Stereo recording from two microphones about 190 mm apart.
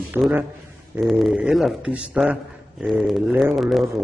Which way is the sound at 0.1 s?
10° right (ahead or behind).